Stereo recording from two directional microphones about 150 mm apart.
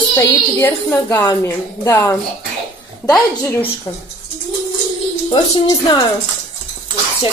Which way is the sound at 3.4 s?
20° left (ahead or behind).